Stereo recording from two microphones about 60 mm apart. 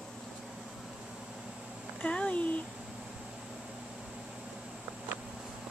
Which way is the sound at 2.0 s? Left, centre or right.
Centre.